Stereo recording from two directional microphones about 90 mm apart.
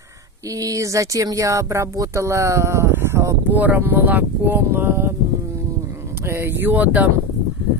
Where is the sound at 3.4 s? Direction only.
20° right (ahead or behind).